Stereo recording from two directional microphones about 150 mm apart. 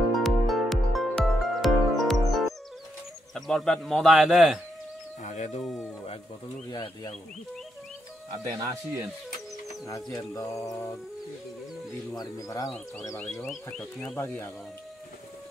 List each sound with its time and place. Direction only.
0.1 s music: centre (ahead or behind)
3.3 s speech: 5° left (ahead or behind)
5.2 s speech: 55° left (ahead or behind)
5.6 s speech: centre (ahead or behind)
6.7 s mantra: 30° left (ahead or behind)
8.5 s speech: 25° right (ahead or behind)
10.1 s mantra: 20° left (ahead or behind)
12.2 s mantra: 20° left (ahead or behind)
12.6 s speech: 5° left (ahead or behind)
14.1 s speech: 15° left (ahead or behind)